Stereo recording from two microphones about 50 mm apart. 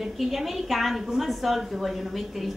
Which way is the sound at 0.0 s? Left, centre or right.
Centre.